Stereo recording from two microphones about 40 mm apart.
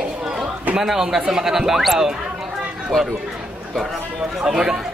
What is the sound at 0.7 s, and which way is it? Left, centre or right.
Speech, centre.